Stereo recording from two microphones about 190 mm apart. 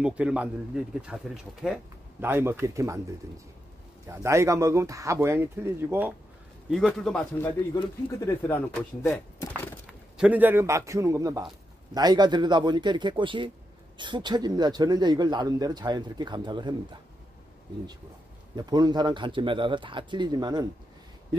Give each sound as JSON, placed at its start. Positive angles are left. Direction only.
{"t": 0.0, "sound": "a man's voice", "side_deg": -5}
{"t": 6.7, "sound": "a man's voice", "side_deg": 0}
{"t": 7.7, "sound": "speech", "side_deg": 20}
{"t": 9.8, "sound": "a man's voice", "side_deg": -5}
{"t": 18.6, "sound": "speech", "side_deg": -20}